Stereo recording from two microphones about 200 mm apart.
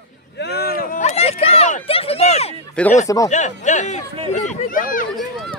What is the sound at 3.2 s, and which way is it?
Speech, 35° left (ahead or behind).